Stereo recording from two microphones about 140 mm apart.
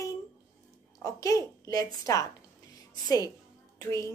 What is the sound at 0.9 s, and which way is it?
A woman's voice, 25° left (ahead or behind).